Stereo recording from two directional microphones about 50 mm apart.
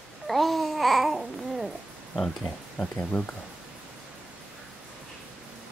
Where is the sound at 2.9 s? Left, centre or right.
Left.